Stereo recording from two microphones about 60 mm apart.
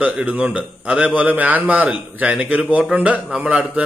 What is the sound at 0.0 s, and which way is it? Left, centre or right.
A man's voice, right.